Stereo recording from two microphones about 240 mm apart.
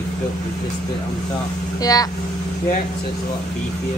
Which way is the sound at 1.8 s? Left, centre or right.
Centre.